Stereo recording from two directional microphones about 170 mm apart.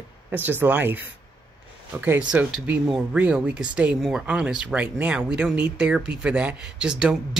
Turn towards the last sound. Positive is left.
turn(degrees=-5)  # may be behind; listen again after turning